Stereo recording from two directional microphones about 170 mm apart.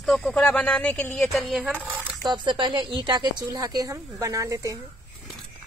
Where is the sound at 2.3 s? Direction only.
25° right (ahead or behind).